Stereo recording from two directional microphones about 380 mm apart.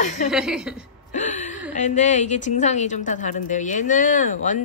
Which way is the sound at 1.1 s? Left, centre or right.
Centre.